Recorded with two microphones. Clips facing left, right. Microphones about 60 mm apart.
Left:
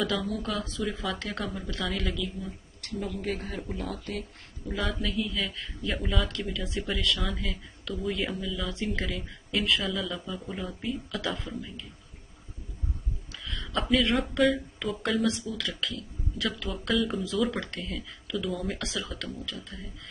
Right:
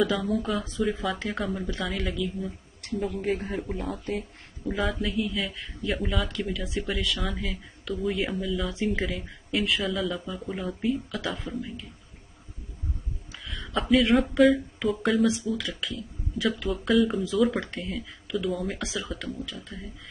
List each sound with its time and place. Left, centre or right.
0.0 s speech: centre
4.7 s speech: centre
5.1 s speech: centre
13.5 s speech: centre